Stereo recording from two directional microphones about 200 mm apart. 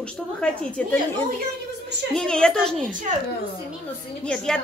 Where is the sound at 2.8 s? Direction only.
40° right (ahead or behind).